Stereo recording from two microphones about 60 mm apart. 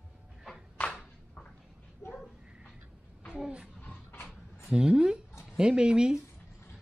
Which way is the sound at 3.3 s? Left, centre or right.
Centre.